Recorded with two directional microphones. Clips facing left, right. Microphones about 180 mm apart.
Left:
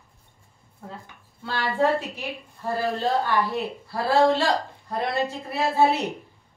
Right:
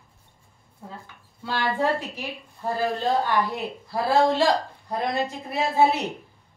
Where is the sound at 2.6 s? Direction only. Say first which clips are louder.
Even; 15° right (ahead or behind).